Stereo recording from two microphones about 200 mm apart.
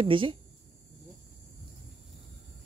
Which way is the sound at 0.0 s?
25° right (ahead or behind).